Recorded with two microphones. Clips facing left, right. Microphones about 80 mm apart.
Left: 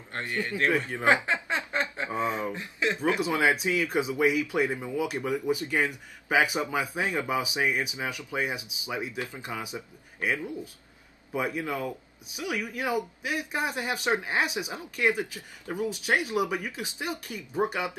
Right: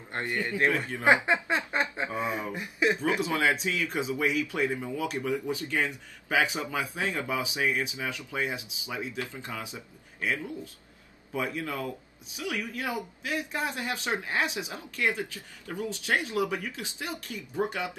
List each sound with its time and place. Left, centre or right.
0.1 s a man's voice: right
0.7 s speech: left
1.0 s a man's voice: right
1.7 s snicker: centre
2.5 s speech: centre
3.2 s a man's voice: left